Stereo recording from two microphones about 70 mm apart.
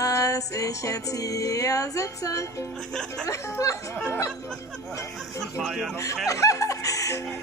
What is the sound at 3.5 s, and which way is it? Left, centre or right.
Speech, left.